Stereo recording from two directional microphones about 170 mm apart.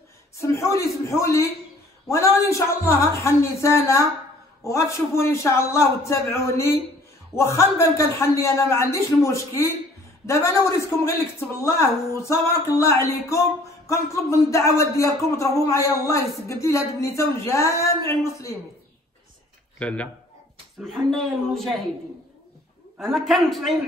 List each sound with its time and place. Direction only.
0.4 s a man's voice: 15° left (ahead or behind)
19.8 s a man's voice: 5° left (ahead or behind)
22.9 s a woman's voice: centre (ahead or behind)